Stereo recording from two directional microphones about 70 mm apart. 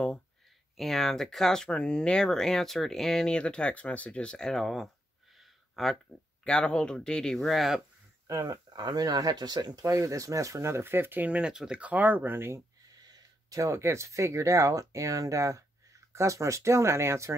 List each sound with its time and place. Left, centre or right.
0.7 s speech: centre
5.4 s a sound: centre
6.4 s speech: centre
8.3 s speech: right
8.6 s speech: right
13.0 s a sound: right
13.6 s speech: right